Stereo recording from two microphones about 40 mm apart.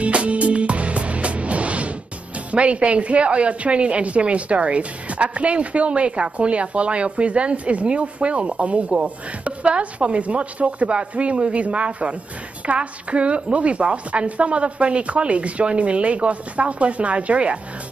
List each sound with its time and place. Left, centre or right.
0.0 s music: right
2.5 s a woman's voice: right